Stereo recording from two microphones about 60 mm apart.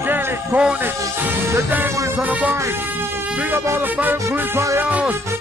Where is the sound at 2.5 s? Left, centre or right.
Right.